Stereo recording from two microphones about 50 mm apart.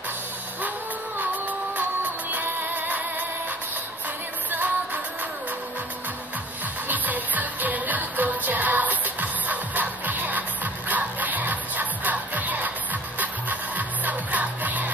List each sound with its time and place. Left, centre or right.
2.3 s music: right
4.5 s music: right
6.9 s music: right